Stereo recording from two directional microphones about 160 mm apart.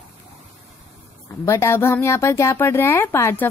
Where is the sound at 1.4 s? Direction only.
15° left (ahead or behind).